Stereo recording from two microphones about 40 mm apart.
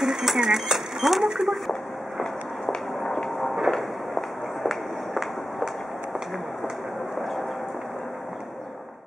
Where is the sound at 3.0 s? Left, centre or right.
Centre.